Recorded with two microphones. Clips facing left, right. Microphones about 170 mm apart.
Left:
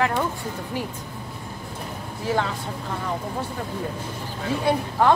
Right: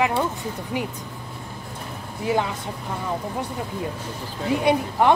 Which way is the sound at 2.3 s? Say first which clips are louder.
Right 1 dB; 15° right (ahead or behind).